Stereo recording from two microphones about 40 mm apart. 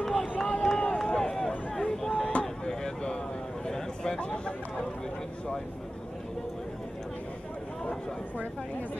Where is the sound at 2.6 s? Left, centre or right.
Left.